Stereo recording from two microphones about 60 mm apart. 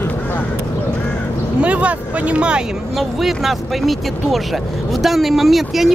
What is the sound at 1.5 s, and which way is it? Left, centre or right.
Speech, right.